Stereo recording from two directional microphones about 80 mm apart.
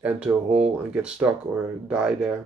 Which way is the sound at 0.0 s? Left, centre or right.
Centre.